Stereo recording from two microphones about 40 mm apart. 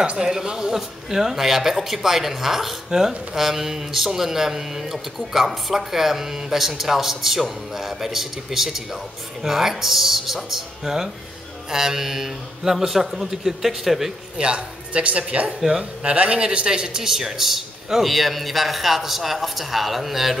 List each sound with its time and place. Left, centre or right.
0.0 s speech: right
0.3 s speech: centre
14.4 s a man's voice: right; by 20.3 s centre